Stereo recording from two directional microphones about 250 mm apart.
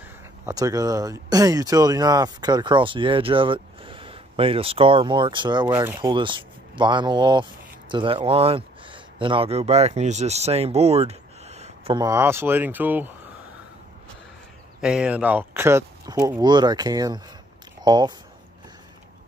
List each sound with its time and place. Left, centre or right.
0.5 s speech: centre
14.8 s speech: centre